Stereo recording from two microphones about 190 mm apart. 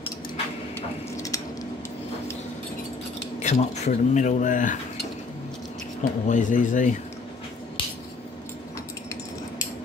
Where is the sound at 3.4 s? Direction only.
35° left (ahead or behind).